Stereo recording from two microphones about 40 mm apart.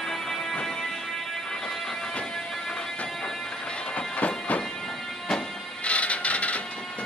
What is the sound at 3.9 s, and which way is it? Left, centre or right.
Music, left.